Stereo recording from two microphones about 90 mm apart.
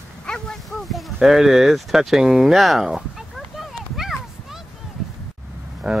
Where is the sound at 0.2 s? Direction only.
10° left (ahead or behind).